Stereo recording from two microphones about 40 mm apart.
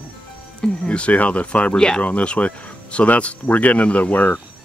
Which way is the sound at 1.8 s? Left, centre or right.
Centre.